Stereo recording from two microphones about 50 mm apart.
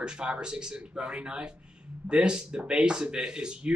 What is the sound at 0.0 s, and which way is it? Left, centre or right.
Speech, centre.